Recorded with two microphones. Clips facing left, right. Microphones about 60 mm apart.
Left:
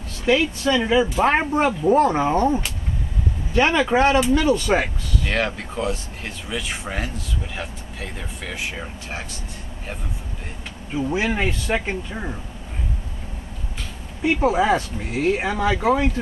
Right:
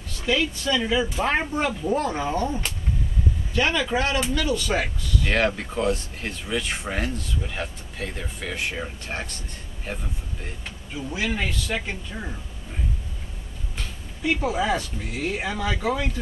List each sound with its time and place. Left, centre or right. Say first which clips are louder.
0.2 s speech: left 5 dB; left
4.8 s speech: even; centre
11.0 s speech: left 5 dB; left
14.4 s speech: left 9 dB; left